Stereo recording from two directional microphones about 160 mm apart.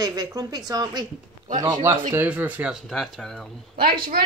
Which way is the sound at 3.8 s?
65° right (ahead or behind).